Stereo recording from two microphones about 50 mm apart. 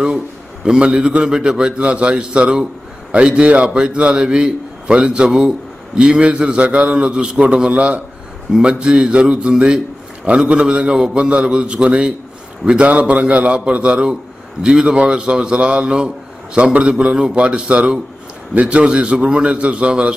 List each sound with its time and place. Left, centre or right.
0.7 s a man's voice: centre